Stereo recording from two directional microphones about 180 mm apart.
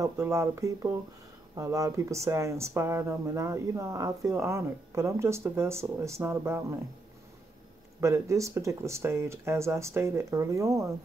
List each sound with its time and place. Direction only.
0.0 s speech: 15° right (ahead or behind)
8.0 s speech: 15° right (ahead or behind)